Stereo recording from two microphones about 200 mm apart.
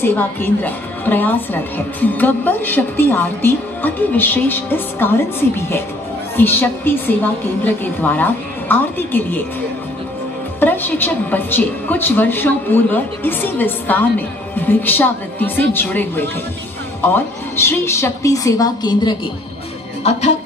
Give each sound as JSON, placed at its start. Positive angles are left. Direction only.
{"t": 0.0, "sound": "a woman's voice", "side_deg": 10}
{"t": 6.3, "sound": "a woman's voice", "side_deg": 10}
{"t": 10.6, "sound": "a woman's voice", "side_deg": 10}
{"t": 20.0, "sound": "speech", "side_deg": 35}